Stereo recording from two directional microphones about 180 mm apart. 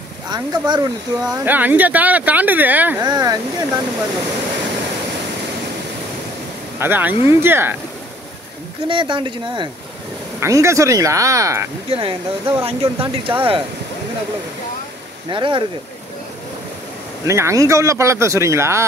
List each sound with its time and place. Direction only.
0.3 s speech: 25° right (ahead or behind)
1.2 s speech: 10° right (ahead or behind)
3.0 s speech: 20° right (ahead or behind)
6.8 s speech: 10° right (ahead or behind)
8.8 s speech: 25° right (ahead or behind)
10.4 s speech: 15° right (ahead or behind)
11.9 s speech: 30° right (ahead or behind)
15.2 s speech: 25° right (ahead or behind)
17.3 s speech: 15° right (ahead or behind)